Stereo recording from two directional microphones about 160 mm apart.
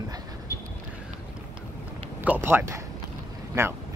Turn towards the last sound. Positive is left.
turn(degrees=-15)  # may be behind; listen again after turning